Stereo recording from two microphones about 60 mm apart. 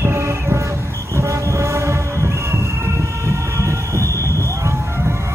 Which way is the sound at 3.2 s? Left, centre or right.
Right.